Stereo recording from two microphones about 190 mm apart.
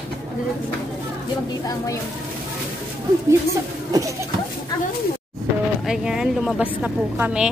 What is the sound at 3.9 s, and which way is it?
Speech, 15° right (ahead or behind).